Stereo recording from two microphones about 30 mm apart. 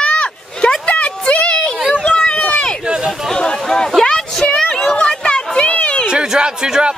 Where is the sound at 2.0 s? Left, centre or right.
Left.